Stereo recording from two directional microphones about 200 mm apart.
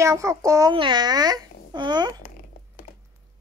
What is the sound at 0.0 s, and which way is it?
A child's voice, 15° right (ahead or behind).